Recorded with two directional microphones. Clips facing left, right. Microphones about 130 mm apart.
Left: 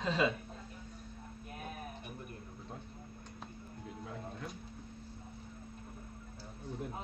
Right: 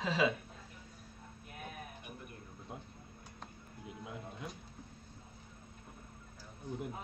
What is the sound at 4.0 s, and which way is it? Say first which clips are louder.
Speech: left 1 dB; 10° right (ahead or behind).